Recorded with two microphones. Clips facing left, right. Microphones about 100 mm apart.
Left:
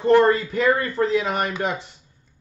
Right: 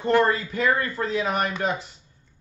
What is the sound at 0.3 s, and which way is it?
Speech, 40° left (ahead or behind).